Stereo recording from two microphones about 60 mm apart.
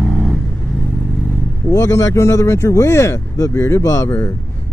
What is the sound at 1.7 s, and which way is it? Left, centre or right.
Speech, left.